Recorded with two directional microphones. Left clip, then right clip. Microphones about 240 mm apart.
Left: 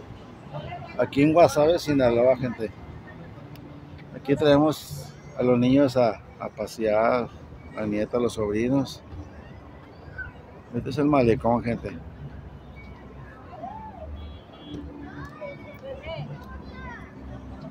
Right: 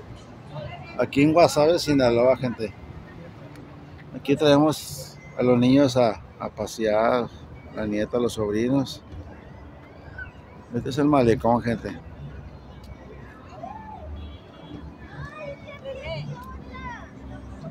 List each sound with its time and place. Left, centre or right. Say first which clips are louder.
0.9 s speech: even; centre
4.3 s speech: right 1 dB; centre
10.9 s speech: right 1 dB; centre
16.0 s a sound: right 2 dB; right